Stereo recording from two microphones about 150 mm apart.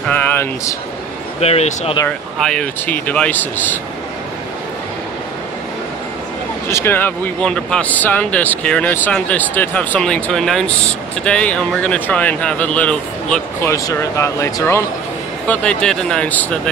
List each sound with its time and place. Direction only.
0.1 s a sound: 10° left (ahead or behind)
1.4 s speech: 45° left (ahead or behind)
2.0 s speech: 5° left (ahead or behind)
6.7 s speech: 15° left (ahead or behind)
13.7 s speech: 20° left (ahead or behind)